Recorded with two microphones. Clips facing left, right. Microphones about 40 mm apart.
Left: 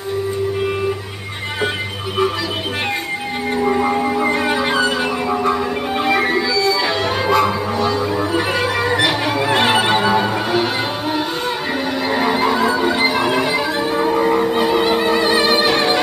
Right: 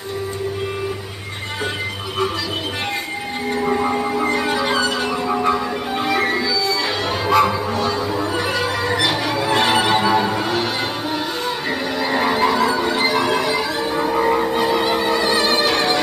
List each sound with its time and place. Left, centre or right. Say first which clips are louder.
3.5 s music: left 3 dB; centre
5.3 s music: even; centre
5.9 s music: left 3 dB; centre
14.1 s music: even; centre
14.5 s music: left 2 dB; centre